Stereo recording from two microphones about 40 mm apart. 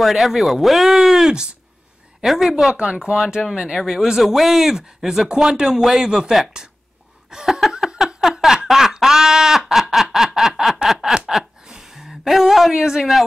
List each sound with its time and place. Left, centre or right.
0.0 s speech: centre
2.7 s speech: right
3.5 s speech: centre
5.8 s speech: centre
6.0 s speech: centre
8.2 s a sound: centre
8.6 s snicker: centre
11.2 s a sound: centre
12.7 s speech: centre